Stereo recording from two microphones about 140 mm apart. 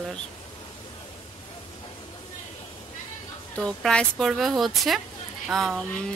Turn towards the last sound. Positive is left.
turn(degrees=5)  # may be behind; listen again after turning